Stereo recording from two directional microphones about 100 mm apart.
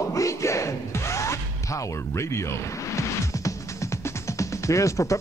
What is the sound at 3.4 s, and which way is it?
Music, 30° left (ahead or behind).